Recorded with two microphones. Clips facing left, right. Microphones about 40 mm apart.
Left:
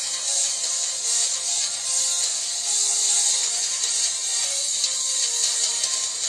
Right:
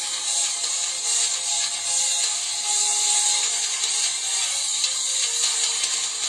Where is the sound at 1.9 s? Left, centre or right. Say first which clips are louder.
Right 2 dB; right.